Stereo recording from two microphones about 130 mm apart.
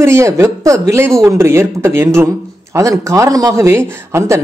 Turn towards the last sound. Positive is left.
turn(degrees=-20)  # may be behind; listen again after turning